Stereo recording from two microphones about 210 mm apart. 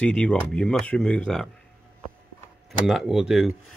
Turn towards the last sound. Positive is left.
turn(degrees=0)  # may be behind; listen again after turning